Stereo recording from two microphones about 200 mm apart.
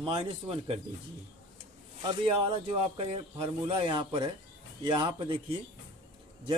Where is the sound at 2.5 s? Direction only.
30° right (ahead or behind).